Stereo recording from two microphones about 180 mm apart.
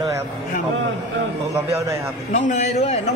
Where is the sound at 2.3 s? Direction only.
45° left (ahead or behind).